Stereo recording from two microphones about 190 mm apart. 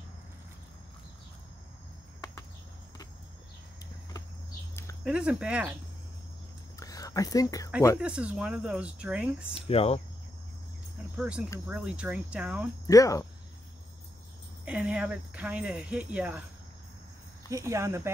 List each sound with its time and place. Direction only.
5.0 s speech: 5° right (ahead or behind)
6.8 s whispering: 20° left (ahead or behind)
8.0 s speech: 5° right (ahead or behind)
9.5 s speech: 30° left (ahead or behind)
11.1 s speech: 5° right (ahead or behind)
11.6 s cricket: 5° right (ahead or behind)
12.8 s cricket: 15° left (ahead or behind)
14.6 s speech: 5° right (ahead or behind)
17.5 s cricket: 15° right (ahead or behind)